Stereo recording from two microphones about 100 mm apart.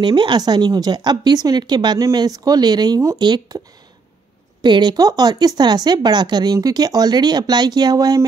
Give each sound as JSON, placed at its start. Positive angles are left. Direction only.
{"t": 0.0, "sound": "speech", "side_deg": -50}
{"t": 4.6, "sound": "speech", "side_deg": -45}